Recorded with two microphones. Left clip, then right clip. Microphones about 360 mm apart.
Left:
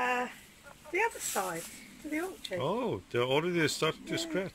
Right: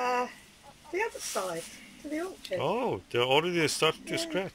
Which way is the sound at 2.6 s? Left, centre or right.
Centre.